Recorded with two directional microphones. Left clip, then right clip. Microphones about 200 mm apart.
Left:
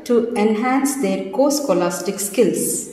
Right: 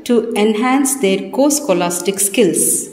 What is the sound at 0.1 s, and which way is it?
A woman's voice, 50° right (ahead or behind).